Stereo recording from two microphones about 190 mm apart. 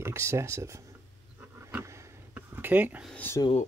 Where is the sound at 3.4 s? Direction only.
30° left (ahead or behind).